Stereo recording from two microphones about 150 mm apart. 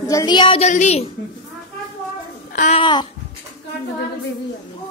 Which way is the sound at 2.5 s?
50° left (ahead or behind).